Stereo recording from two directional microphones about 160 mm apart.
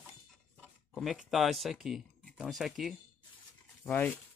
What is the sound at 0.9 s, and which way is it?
Speech, centre (ahead or behind).